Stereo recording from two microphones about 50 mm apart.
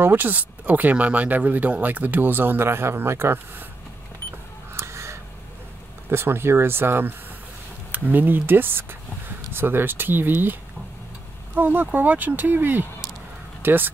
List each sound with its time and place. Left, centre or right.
0.0 s speech: right
4.7 s crow: right
6.0 s speech: right
7.9 s speech: right
13.6 s a sound: right